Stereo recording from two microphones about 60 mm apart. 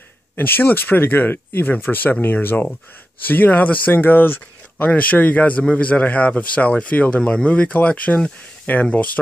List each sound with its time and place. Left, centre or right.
0.4 s a man's voice: left